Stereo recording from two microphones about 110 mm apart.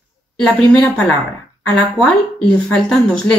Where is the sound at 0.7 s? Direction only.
15° left (ahead or behind).